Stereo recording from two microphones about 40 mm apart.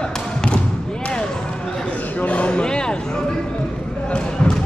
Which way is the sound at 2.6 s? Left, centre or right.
Left.